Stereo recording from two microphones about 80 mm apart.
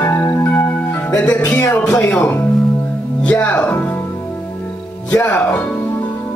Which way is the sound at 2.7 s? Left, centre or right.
Left.